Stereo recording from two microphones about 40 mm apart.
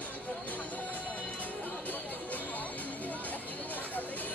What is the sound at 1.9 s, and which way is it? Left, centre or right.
Music, left.